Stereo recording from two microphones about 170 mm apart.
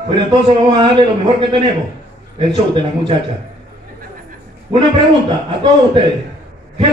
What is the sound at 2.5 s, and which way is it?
Speech, 30° right (ahead or behind).